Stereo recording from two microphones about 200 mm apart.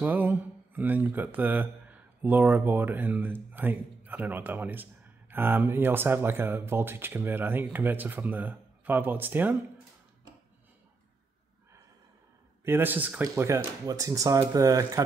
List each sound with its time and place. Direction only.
0.0 s speech: 10° right (ahead or behind)
12.6 s speech: 10° right (ahead or behind)